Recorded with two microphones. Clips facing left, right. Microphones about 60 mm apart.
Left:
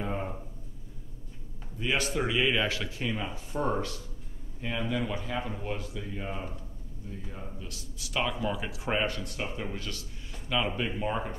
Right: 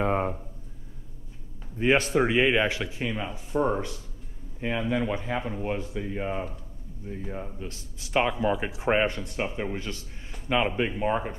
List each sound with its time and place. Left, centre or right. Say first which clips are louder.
0.0 s a sound: right 8 dB; right
1.8 s a man's voice: right 7 dB; right
3.1 s speech: right 3 dB; centre
4.6 s a man's voice: right 4 dB; right